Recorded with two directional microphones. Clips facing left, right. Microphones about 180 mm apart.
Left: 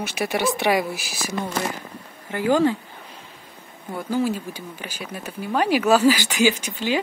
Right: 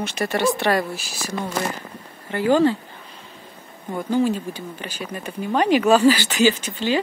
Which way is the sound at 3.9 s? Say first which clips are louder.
Right 3 dB; 10° left (ahead or behind).